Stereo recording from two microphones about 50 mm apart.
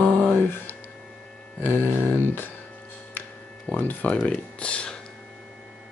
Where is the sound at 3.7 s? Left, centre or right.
Left.